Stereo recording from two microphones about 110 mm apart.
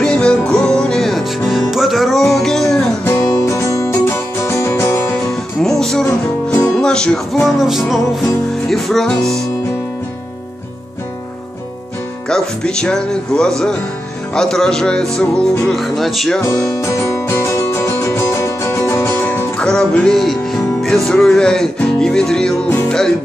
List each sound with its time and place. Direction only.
0.0 s music: 10° left (ahead or behind)
3.3 s music: 25° left (ahead or behind)
5.6 s music: 5° left (ahead or behind)
12.3 s speech: 5° left (ahead or behind)
14.3 s music: 5° left (ahead or behind)
16.7 s music: 25° left (ahead or behind)
19.6 s music: 5° left (ahead or behind)